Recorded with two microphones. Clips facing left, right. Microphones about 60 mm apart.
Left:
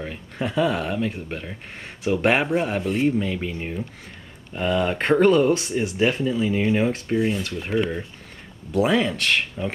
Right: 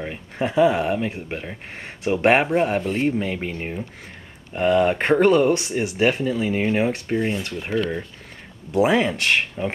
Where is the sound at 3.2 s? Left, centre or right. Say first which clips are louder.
Right 1 dB; right; by 5.4 s centre.